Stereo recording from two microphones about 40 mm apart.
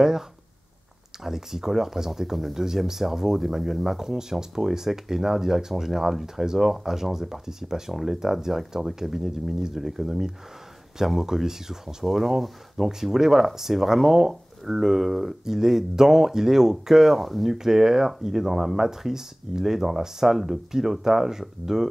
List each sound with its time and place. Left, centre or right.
1.2 s speech: centre